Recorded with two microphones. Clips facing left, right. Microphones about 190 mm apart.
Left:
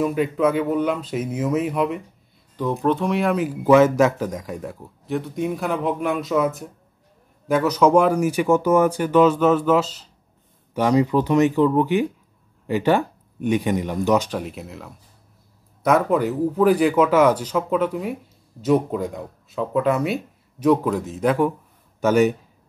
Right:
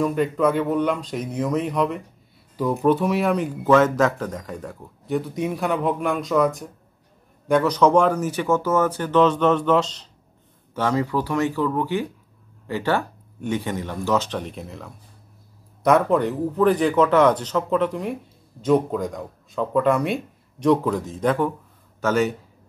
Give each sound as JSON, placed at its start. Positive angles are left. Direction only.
{"t": 0.0, "sound": "speech", "side_deg": 5}
{"t": 2.5, "sound": "speech", "side_deg": -5}